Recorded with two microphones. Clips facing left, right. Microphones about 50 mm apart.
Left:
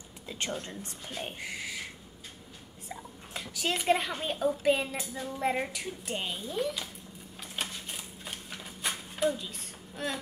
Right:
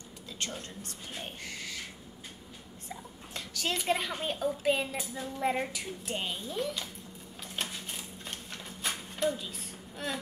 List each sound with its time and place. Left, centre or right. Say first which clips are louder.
0.3 s a woman's voice: left 4 dB; left
2.9 s a child's voice: left 1 dB; centre
7.4 s a sound: even; centre